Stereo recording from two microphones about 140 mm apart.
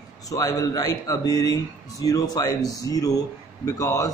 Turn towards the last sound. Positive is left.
turn(degrees=20)  # may be behind; listen again after turning